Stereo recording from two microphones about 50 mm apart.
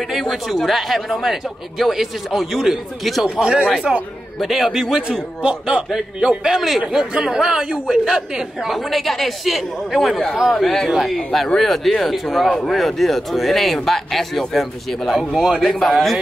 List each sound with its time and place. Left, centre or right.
0.1 s speech: centre
3.3 s a man's voice: centre
3.9 s speech: centre
5.0 s a man's voice: right
5.9 s speech: centre
12.4 s speech: centre
15.1 s speech: centre